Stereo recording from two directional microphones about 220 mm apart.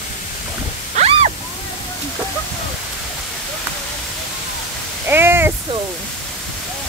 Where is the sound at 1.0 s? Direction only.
30° right (ahead or behind).